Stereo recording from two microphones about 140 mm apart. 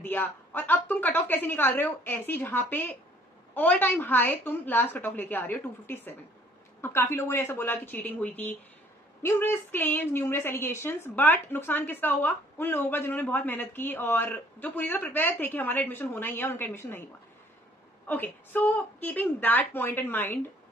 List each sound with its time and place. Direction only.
0.0 s a woman's voice: 15° left (ahead or behind)
18.0 s a woman's voice: 15° left (ahead or behind)